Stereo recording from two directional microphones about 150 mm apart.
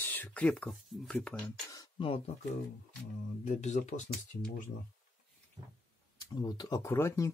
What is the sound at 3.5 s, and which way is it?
Speech, 50° left (ahead or behind).